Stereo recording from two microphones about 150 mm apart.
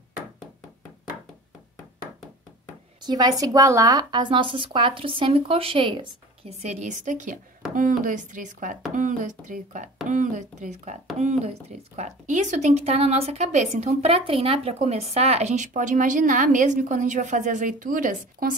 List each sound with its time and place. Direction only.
3.0 s speech: 25° right (ahead or behind)
6.6 s speech: 50° right (ahead or behind); by 18.5 s 65° right (ahead or behind)